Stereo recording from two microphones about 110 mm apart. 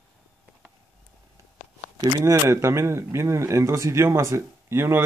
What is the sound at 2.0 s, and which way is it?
Speech, 35° right (ahead or behind).